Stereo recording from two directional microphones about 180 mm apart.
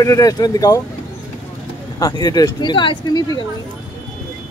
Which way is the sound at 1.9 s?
20° left (ahead or behind).